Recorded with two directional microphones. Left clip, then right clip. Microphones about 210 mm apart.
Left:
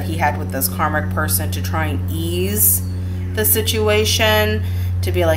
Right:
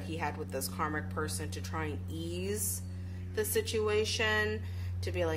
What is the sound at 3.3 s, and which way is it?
Speech, 40° right (ahead or behind).